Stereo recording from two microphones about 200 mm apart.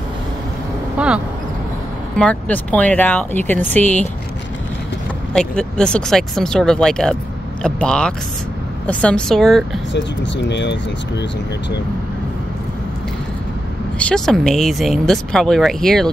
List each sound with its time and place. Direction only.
0.9 s speech: 5° right (ahead or behind)
2.1 s speech: 5° left (ahead or behind)
5.3 s speech: 5° left (ahead or behind)
9.9 s speech: 60° left (ahead or behind)
13.9 s speech: 5° left (ahead or behind)